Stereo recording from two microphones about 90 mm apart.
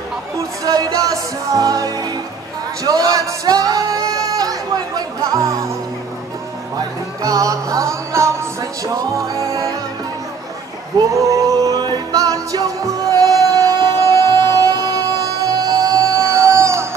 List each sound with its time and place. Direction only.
0.4 s speech: 45° right (ahead or behind)
2.8 s singing: 40° right (ahead or behind)
7.2 s music: 40° right (ahead or behind)
11.0 s music: 40° right (ahead or behind)